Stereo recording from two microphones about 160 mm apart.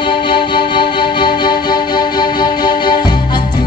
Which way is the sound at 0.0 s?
30° left (ahead or behind).